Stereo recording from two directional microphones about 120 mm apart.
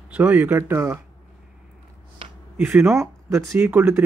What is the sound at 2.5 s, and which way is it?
Speech, 10° right (ahead or behind).